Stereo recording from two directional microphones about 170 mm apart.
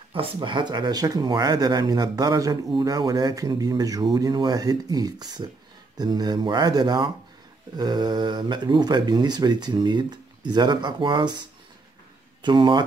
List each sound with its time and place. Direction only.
0.1 s speech: 30° right (ahead or behind)